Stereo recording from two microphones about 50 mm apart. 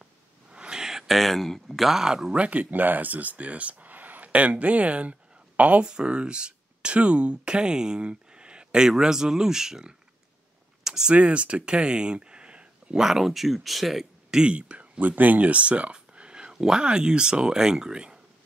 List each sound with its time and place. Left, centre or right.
0.5 s a sound: centre
2.3 s speech: right
5.9 s speech: centre
10.8 s a sound: centre
11.1 s speech: right; by 14.4 s centre
14.4 s speech: right